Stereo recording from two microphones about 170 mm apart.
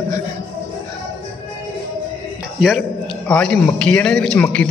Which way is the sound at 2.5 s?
Centre (ahead or behind).